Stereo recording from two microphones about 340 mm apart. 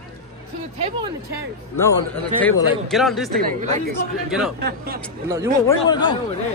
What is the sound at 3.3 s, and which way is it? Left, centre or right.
Speech, right.